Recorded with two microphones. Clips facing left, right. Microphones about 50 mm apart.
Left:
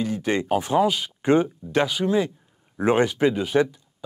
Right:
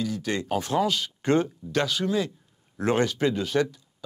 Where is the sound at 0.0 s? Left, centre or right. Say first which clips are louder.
Left 4 dB; left.